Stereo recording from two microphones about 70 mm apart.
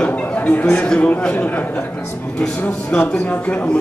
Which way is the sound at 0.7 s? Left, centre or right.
Centre.